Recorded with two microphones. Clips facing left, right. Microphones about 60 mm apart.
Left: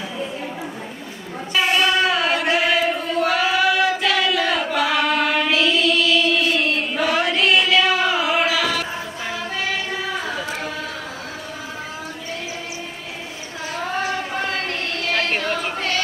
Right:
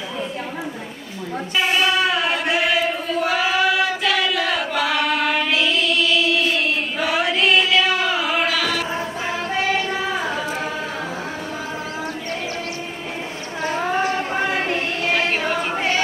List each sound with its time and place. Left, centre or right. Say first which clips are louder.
1.6 s a sound: left 1 dB; centre
10.2 s a capella: right 2 dB; centre
14.3 s choir: right 3 dB; centre